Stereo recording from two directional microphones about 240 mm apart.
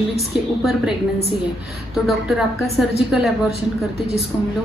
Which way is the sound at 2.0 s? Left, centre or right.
Centre.